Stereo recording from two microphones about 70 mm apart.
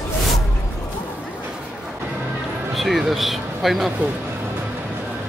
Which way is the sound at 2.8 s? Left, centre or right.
Centre.